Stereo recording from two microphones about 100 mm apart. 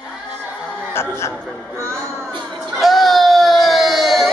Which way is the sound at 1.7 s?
25° right (ahead or behind).